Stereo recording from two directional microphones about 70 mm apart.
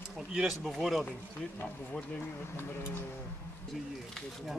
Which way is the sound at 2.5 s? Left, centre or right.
Left.